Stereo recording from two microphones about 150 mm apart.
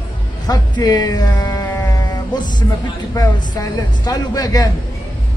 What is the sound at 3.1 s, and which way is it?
A woman's voice, 25° left (ahead or behind).